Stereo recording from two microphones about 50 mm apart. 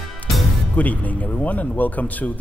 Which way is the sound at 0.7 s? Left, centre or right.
Left.